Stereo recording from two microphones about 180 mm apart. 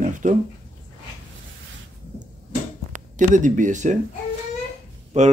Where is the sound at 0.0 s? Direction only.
45° right (ahead or behind).